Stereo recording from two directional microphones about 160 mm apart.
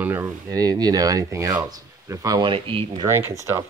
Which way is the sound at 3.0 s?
15° right (ahead or behind).